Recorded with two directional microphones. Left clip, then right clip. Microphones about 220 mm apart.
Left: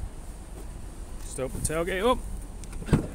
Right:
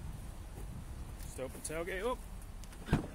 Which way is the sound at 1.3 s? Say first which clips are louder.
Left 11 dB; 25° left (ahead or behind).